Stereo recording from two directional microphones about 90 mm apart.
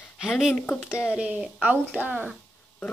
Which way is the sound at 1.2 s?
10° right (ahead or behind).